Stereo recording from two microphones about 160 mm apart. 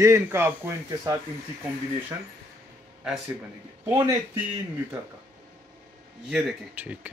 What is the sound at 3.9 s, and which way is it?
Speech, 20° right (ahead or behind).